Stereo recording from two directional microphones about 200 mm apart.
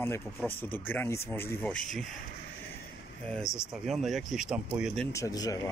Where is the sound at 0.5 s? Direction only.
10° left (ahead or behind).